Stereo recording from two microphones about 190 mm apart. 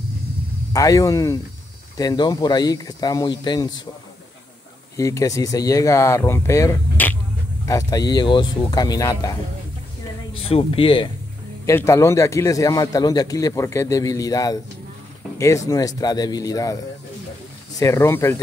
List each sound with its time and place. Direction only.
0.7 s a man's voice: 15° left (ahead or behind)
4.9 s a man's voice: 15° left (ahead or behind)
10.4 s speech: 30° left (ahead or behind)
11.6 s a man's voice: 15° left (ahead or behind)
17.7 s a man's voice: 15° left (ahead or behind)